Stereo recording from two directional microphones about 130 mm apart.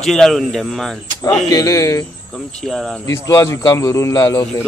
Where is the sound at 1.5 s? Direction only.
25° left (ahead or behind).